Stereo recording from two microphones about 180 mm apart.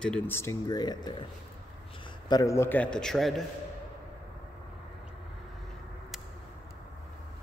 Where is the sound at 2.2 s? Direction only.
20° left (ahead or behind); by 3.4 s centre (ahead or behind).